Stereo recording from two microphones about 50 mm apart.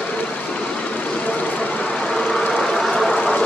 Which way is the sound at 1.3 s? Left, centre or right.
Left.